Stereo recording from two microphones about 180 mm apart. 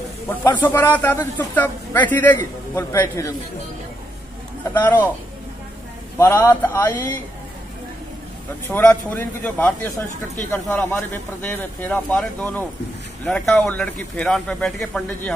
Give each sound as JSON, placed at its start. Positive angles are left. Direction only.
{"t": 0.3, "sound": "a man's voice", "side_deg": 10}
{"t": 4.7, "sound": "a man's voice", "side_deg": 10}
{"t": 6.1, "sound": "a man's voice", "side_deg": 15}
{"t": 8.6, "sound": "a man's voice", "side_deg": 10}